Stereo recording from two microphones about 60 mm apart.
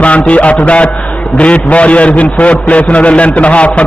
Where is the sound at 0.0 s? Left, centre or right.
Left.